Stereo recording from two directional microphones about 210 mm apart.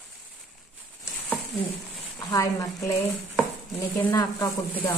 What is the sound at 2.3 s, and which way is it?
Speech, 15° left (ahead or behind).